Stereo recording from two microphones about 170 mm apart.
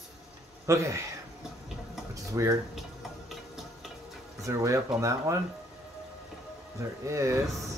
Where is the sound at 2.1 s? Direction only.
20° right (ahead or behind).